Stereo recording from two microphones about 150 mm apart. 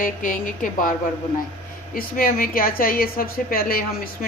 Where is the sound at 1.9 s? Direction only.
75° left (ahead or behind).